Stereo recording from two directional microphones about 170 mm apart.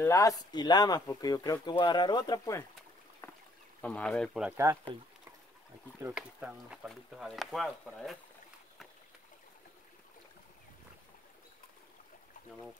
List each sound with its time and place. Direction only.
0.0 s speech: 20° left (ahead or behind)
3.2 s duck: 10° left (ahead or behind)
3.8 s speech: 10° left (ahead or behind)
6.1 s speech: 5° right (ahead or behind)